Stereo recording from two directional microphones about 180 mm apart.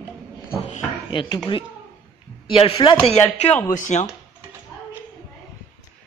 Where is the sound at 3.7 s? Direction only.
45° left (ahead or behind).